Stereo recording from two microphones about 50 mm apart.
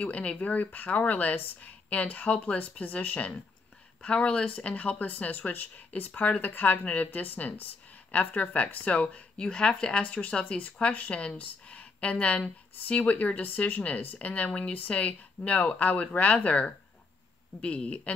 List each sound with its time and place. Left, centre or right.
0.0 s speech: left